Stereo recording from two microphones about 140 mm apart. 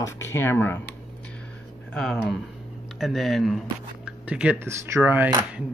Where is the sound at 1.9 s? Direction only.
5° left (ahead or behind); by 5.6 s 15° right (ahead or behind).